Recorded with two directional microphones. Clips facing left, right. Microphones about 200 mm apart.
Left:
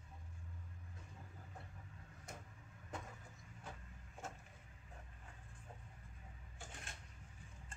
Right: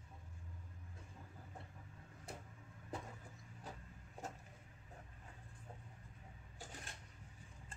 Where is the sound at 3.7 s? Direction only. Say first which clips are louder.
Right 1 dB; 35° right (ahead or behind).